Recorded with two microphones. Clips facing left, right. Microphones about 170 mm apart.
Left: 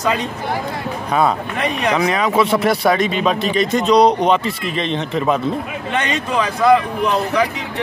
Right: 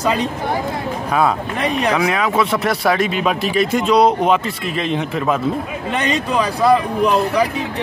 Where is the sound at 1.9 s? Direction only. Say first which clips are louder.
Left 4 dB; 5° right (ahead or behind).